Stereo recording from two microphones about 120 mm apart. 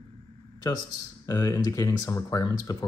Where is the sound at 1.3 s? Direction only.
30° left (ahead or behind).